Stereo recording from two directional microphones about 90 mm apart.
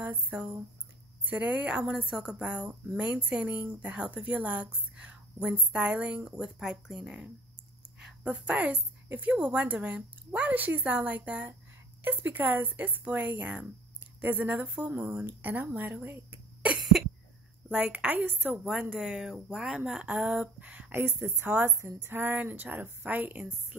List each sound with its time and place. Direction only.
0.0 s a woman's voice: 20° right (ahead or behind)
17.6 s a woman's voice: 20° right (ahead or behind)